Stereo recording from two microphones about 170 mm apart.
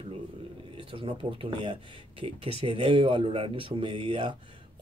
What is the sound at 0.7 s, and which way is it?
Speech, 30° right (ahead or behind).